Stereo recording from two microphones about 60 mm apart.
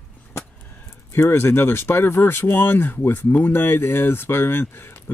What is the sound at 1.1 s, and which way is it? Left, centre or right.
Speech, left.